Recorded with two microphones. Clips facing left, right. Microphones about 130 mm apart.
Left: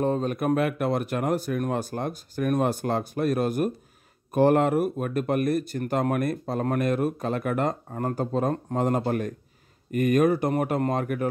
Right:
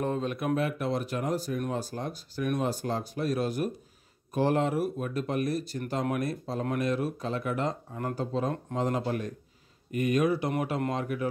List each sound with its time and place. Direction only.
0.0 s speech: 40° left (ahead or behind)
0.6 s speech: 60° left (ahead or behind)